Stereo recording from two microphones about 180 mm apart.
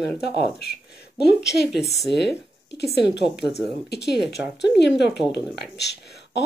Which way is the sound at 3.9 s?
65° left (ahead or behind).